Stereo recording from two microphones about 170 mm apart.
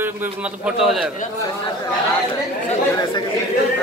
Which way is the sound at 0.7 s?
Centre (ahead or behind).